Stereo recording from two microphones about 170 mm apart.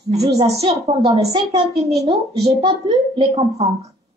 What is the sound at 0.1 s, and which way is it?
Speech, 70° right (ahead or behind).